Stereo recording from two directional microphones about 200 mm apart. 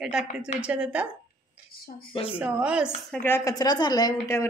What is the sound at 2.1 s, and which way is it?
Speech, 25° left (ahead or behind).